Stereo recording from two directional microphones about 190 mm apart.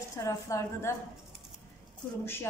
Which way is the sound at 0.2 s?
15° left (ahead or behind).